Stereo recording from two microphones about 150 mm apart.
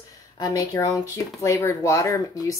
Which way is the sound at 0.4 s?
25° left (ahead or behind).